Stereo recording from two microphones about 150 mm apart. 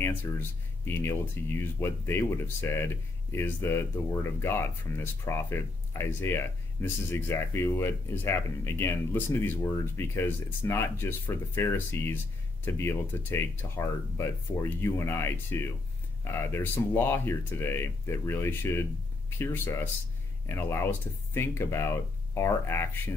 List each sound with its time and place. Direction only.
0.0 s speech: 15° left (ahead or behind)